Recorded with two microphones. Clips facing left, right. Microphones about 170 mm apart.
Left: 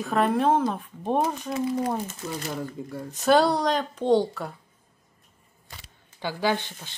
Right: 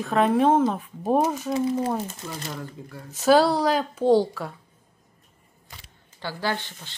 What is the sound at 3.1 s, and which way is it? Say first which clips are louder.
Speech: right 2 dB; centre (ahead or behind).